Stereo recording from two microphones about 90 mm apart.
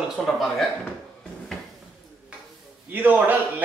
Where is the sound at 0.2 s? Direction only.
5° left (ahead or behind).